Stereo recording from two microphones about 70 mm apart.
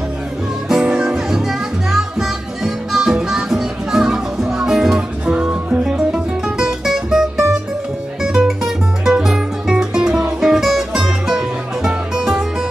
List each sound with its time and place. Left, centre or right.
0.7 s music: centre
5.2 s music: centre